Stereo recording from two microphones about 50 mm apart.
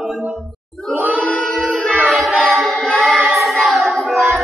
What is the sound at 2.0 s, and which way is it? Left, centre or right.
Child singing, centre.